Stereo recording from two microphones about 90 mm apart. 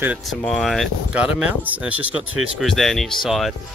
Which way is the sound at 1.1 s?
15° right (ahead or behind).